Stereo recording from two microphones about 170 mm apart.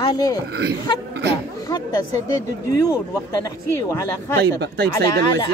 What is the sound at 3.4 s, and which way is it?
Speech, 20° left (ahead or behind).